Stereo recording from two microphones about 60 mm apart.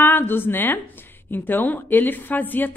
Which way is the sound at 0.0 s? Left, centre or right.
Left.